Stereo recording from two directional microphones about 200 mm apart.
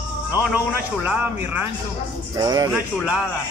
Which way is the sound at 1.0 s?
10° right (ahead or behind).